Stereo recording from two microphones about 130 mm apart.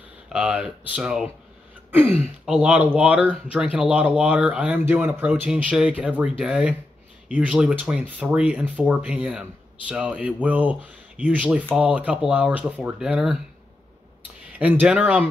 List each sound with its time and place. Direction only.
0.3 s speech: 5° right (ahead or behind)
2.4 s speech: 5° right (ahead or behind)
14.6 s speech: 10° right (ahead or behind)